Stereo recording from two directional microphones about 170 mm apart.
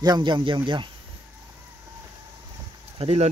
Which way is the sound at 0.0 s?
25° right (ahead or behind).